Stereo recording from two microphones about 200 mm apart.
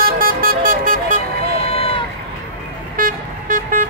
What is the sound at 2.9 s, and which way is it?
Vehicle, 45° right (ahead or behind).